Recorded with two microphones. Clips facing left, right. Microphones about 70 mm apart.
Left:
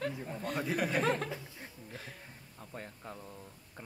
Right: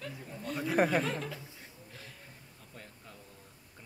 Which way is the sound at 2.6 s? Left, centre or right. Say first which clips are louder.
Left 8 dB; left.